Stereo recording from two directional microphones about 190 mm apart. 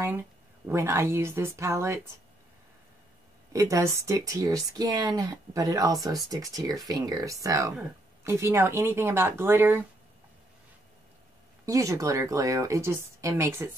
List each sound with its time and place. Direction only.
0.7 s speech: 15° right (ahead or behind)
3.5 s speech: 15° right (ahead or behind)
11.6 s speech: 15° right (ahead or behind)